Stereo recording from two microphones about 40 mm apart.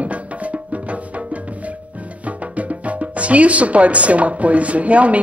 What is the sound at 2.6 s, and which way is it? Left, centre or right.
Speech, right.